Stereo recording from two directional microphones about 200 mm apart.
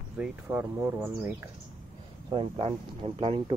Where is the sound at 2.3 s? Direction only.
25° right (ahead or behind).